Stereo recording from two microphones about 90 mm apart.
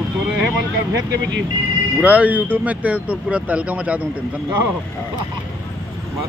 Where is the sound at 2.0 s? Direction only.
15° right (ahead or behind).